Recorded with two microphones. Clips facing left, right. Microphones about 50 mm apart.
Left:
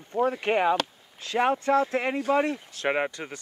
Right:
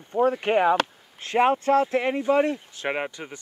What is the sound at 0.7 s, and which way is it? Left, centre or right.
Speech, right.